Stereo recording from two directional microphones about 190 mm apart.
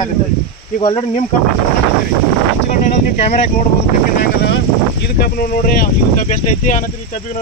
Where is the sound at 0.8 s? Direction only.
25° left (ahead or behind).